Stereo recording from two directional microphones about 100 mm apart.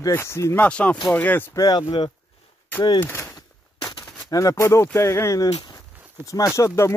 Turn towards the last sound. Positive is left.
turn(degrees=30)  # may be behind; listen again after turning